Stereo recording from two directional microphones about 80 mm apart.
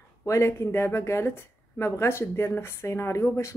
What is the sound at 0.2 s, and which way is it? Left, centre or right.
Speech, left.